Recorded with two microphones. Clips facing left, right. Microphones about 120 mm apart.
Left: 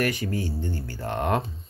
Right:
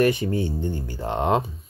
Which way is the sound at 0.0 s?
20° right (ahead or behind).